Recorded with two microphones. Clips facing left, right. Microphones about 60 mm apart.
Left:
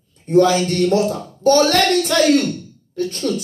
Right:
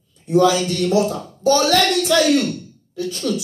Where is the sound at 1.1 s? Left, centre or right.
Left.